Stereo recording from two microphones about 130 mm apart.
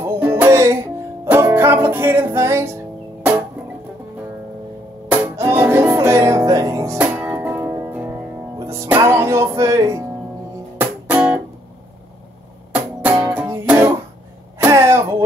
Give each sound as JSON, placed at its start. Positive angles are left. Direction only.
{"t": 0.0, "sound": "music", "side_deg": -20}
{"t": 5.1, "sound": "music", "side_deg": -20}
{"t": 10.8, "sound": "music", "side_deg": -15}
{"t": 12.7, "sound": "music", "side_deg": -10}
{"t": 14.7, "sound": "throat clearing", "side_deg": -20}